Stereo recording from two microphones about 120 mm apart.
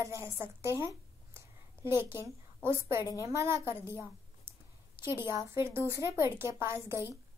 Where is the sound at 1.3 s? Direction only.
20° right (ahead or behind).